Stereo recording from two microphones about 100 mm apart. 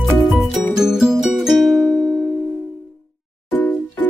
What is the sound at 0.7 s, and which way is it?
Music, 5° right (ahead or behind).